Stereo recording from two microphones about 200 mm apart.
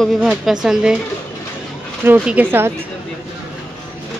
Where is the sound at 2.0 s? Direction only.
5° right (ahead or behind).